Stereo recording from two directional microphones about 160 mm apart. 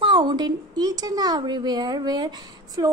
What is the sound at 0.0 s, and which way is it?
A woman's voice, 30° right (ahead or behind).